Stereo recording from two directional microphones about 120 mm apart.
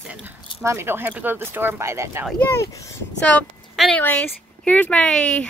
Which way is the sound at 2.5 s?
25° left (ahead or behind).